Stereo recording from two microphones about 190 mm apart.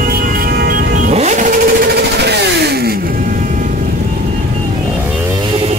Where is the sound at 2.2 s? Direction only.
60° right (ahead or behind); by 3.7 s 45° right (ahead or behind).